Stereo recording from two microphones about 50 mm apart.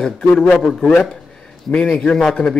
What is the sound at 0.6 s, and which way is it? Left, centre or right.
Speech, centre.